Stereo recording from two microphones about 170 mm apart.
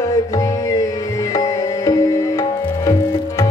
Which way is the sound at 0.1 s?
20° left (ahead or behind).